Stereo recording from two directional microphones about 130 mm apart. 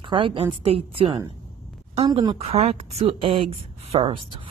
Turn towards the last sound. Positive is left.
turn(degrees=-45)  # may be behind; listen again after turning